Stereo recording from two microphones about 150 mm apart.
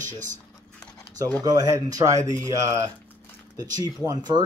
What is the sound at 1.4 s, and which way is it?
A man's voice, 25° right (ahead or behind).